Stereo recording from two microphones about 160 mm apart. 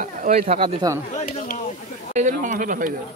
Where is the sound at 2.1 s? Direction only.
50° right (ahead or behind).